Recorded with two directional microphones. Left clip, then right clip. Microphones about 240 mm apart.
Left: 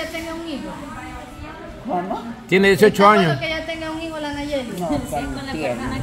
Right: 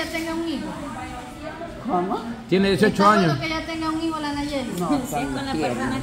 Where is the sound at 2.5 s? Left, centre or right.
Left.